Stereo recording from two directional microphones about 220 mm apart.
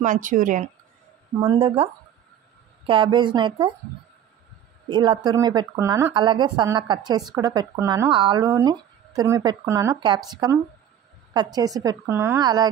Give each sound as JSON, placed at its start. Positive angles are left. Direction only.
{"t": 0.0, "sound": "speech", "side_deg": -35}
{"t": 1.4, "sound": "speech", "side_deg": -25}
{"t": 2.9, "sound": "speech", "side_deg": -20}
{"t": 4.8, "sound": "a woman's voice", "side_deg": -20}